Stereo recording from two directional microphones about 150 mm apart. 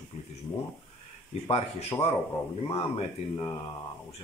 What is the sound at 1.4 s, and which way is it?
Speech, 40° left (ahead or behind).